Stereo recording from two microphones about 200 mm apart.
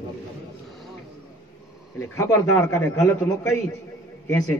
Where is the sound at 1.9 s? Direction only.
15° left (ahead or behind).